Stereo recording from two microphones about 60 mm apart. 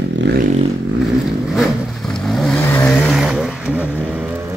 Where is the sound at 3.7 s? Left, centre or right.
Right.